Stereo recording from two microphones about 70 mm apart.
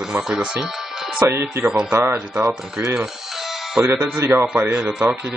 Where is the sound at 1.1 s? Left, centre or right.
Right.